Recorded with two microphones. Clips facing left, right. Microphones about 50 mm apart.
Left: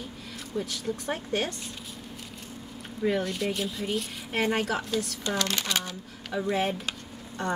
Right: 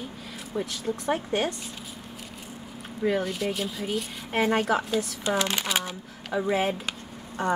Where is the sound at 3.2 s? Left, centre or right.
Centre.